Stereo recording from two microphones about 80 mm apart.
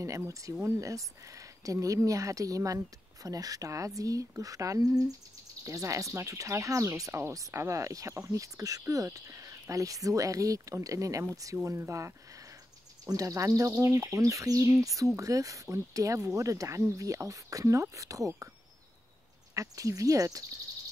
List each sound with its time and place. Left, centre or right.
0.6 s speech: right
19.5 s speech: right